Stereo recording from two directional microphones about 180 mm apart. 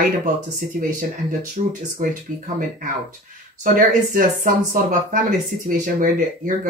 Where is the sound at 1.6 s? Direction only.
40° right (ahead or behind).